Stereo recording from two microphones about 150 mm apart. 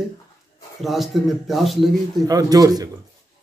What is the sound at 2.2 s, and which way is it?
Speech, 25° right (ahead or behind).